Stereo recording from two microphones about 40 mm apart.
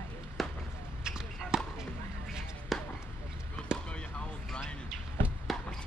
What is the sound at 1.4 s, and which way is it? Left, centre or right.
Basketball bounce, centre.